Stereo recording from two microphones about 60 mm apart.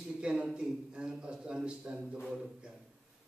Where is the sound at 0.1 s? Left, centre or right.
Centre.